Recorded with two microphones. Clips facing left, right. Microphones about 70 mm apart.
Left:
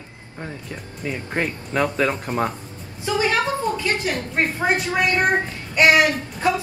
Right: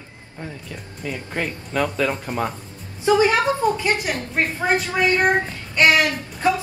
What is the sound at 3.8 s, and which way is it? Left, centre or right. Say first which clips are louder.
Speech: right 1 dB; right.